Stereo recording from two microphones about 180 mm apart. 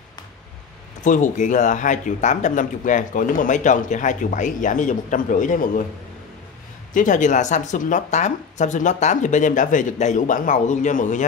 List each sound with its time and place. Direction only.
1.0 s speech: 45° left (ahead or behind)
6.9 s speech: 45° left (ahead or behind)